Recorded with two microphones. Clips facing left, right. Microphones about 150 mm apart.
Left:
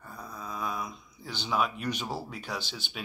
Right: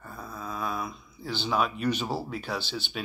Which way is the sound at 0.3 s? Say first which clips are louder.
Right 2 dB; 15° left (ahead or behind).